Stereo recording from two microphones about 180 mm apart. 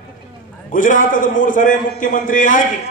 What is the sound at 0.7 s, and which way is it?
A man's voice, 45° left (ahead or behind).